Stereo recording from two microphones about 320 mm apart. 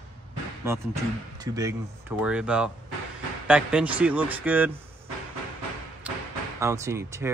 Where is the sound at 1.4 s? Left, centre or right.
Centre.